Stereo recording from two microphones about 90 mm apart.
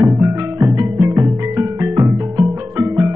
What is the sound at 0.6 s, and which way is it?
Music, 30° right (ahead or behind).